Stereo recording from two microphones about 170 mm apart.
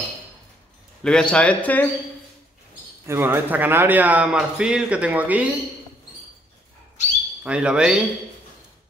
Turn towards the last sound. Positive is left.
turn(degrees=-5)  # may be behind; listen again after turning